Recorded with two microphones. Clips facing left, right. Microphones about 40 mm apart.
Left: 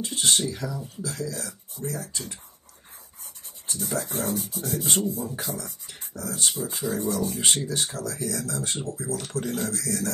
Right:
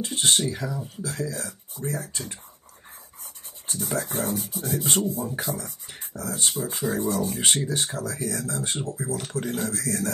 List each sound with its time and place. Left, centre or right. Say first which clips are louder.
0.0 s speech: right 1 dB; right
3.9 s speech: right 1 dB; right
6.7 s speech: right 3 dB; right